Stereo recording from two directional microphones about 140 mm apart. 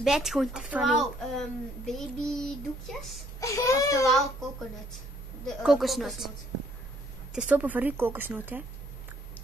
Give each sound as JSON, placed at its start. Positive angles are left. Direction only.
{"t": 0.0, "sound": "speech", "side_deg": -5}
{"t": 3.3, "sound": "speech", "side_deg": 20}
{"t": 5.4, "sound": "speech", "side_deg": 0}
{"t": 7.3, "sound": "a woman's voice", "side_deg": -10}